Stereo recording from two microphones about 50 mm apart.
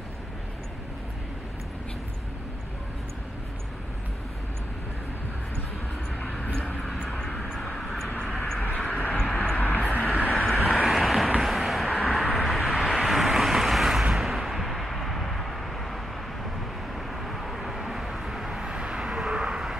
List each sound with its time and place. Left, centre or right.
7.1 s vehicle: centre
7.3 s vehicle: centre
8.6 s vehicle: left
9.1 s vehicle: centre
9.6 s vehicle: left
10.5 s vehicle: centre
14.1 s a sound: centre
17.1 s vehicle: centre